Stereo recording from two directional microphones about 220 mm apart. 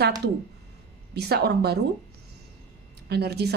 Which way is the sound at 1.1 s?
45° right (ahead or behind).